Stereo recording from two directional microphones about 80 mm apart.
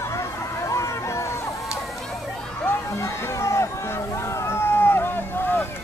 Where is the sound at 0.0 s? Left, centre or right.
Left.